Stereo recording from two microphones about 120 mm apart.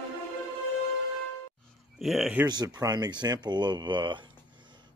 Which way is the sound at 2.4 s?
35° right (ahead or behind).